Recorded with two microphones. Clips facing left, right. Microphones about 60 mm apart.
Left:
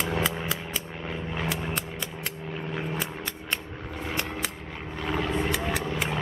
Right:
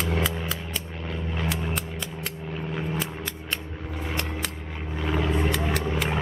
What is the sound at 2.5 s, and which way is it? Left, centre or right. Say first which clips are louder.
Scissors: right 2 dB; centre.